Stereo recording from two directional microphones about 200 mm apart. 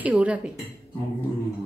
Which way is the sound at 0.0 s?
5° right (ahead or behind).